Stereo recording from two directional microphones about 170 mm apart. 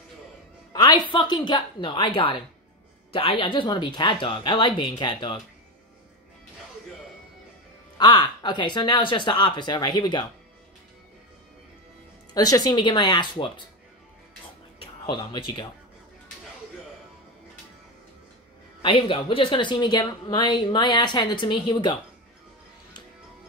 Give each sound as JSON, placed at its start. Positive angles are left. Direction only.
{"t": 0.7, "sound": "a woman's voice", "side_deg": 25}
{"t": 8.0, "sound": "a woman's voice", "side_deg": 25}
{"t": 12.4, "sound": "a woman's voice", "side_deg": 20}
{"t": 14.8, "sound": "speech", "side_deg": 25}
{"t": 18.8, "sound": "a woman's voice", "side_deg": 30}